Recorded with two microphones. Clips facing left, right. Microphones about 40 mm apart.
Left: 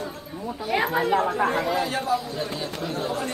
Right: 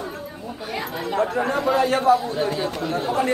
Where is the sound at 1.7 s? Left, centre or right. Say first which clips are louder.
Right 7 dB; right.